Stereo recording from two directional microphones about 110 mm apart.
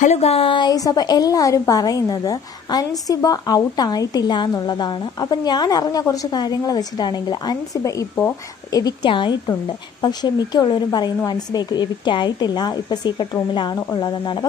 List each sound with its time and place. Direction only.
0.1 s a woman's voice: 70° left (ahead or behind); by 9.1 s 35° left (ahead or behind)
9.1 s a woman's voice: 45° left (ahead or behind)